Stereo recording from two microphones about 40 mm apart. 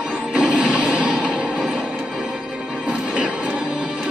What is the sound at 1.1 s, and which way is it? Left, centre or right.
Music, centre.